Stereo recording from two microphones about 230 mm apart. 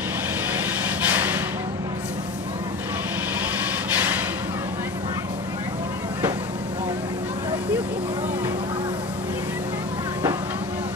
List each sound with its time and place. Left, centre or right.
1.0 s snort: centre
3.9 s snort: centre